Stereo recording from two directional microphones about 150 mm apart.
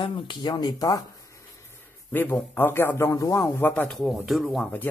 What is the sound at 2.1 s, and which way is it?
Speech, 10° left (ahead or behind).